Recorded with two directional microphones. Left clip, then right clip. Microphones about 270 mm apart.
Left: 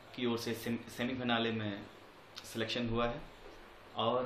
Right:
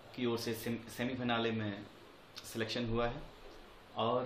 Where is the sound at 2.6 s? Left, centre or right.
Centre.